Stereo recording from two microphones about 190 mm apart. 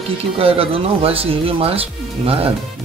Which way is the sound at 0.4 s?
30° right (ahead or behind).